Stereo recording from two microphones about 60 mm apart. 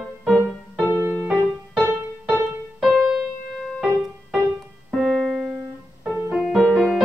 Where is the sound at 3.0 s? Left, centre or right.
Centre.